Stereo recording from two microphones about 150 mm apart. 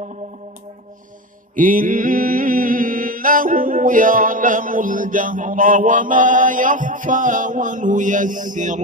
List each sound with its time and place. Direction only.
1.5 s mantra: 65° right (ahead or behind)